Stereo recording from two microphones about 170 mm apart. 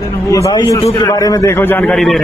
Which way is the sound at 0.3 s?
20° left (ahead or behind).